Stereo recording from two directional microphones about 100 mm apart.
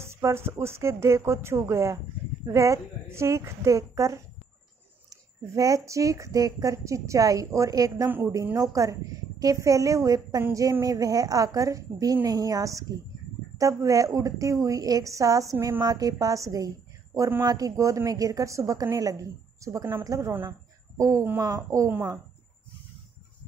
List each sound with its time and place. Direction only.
0.0 s a woman's voice: 25° right (ahead or behind)
5.4 s a woman's voice: 30° right (ahead or behind)